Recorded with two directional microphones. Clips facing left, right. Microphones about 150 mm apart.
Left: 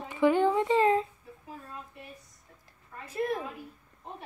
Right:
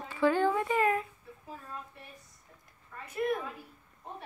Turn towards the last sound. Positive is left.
turn(degrees=30)  # may be behind; listen again after turning